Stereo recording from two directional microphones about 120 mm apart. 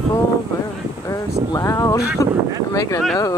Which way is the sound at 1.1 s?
30° left (ahead or behind).